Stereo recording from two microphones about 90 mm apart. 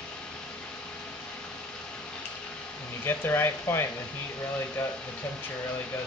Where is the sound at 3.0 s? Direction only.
25° left (ahead or behind).